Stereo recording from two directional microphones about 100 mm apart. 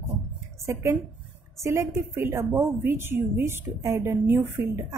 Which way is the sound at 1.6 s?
30° right (ahead or behind).